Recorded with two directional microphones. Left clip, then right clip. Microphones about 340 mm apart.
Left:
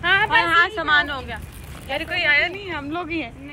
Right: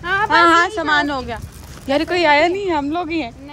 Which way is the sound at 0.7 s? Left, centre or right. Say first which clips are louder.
Right 2 dB; centre.